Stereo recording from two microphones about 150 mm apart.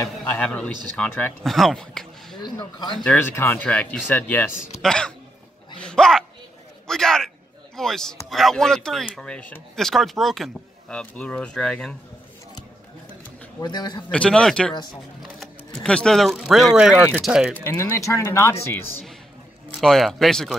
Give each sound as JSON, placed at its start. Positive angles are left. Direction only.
{"t": 0.2, "sound": "a man's voice", "side_deg": 10}
{"t": 2.4, "sound": "speech", "side_deg": 30}
{"t": 3.0, "sound": "speech", "side_deg": 10}
{"t": 5.8, "sound": "a sound", "side_deg": 5}
{"t": 7.7, "sound": "a man's voice", "side_deg": 5}
{"t": 13.6, "sound": "speech", "side_deg": 30}
{"t": 14.1, "sound": "a man's voice", "side_deg": 5}
{"t": 17.6, "sound": "speech", "side_deg": 15}
{"t": 19.7, "sound": "a man's voice", "side_deg": 0}